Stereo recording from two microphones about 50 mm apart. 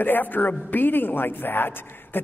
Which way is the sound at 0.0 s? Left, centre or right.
Left.